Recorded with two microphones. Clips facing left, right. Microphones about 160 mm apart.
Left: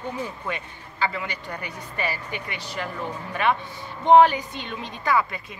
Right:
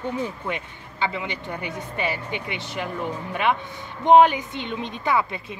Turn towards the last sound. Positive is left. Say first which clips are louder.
# even
turn(degrees=-20)  # may be behind; listen again after turning